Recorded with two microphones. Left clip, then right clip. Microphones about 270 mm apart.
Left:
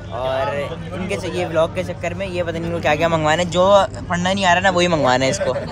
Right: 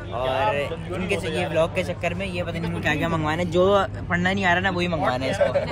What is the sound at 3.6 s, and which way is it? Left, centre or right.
Speech, centre.